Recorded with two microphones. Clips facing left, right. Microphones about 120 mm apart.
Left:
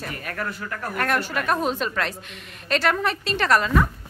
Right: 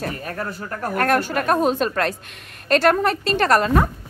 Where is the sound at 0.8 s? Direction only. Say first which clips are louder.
Right 5 dB; 45° right (ahead or behind).